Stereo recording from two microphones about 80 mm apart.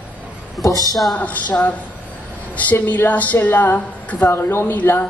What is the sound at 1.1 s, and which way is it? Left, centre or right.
A woman's voice, centre.